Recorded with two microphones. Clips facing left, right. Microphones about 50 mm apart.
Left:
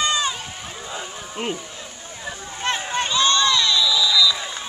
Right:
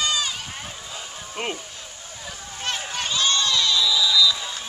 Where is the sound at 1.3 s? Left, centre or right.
Centre.